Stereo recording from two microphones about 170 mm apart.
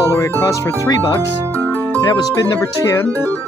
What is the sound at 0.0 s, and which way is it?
Speech, 15° left (ahead or behind).